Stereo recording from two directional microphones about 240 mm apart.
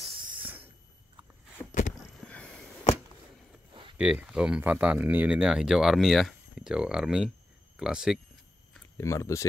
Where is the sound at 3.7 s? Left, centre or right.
Right.